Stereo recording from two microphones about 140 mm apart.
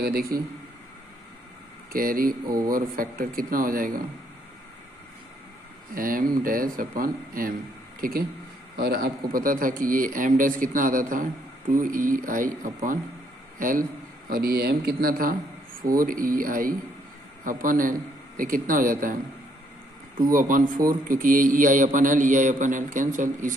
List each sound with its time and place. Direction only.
0.1 s speech: 90° right
1.9 s speech: 90° right
2.4 s speech: 25° right (ahead or behind)
2.7 s speech: 90° right
5.9 s a man's voice: 85° right
14.3 s a man's voice: 90° right
20.2 s a man's voice: 75° right (ahead or behind)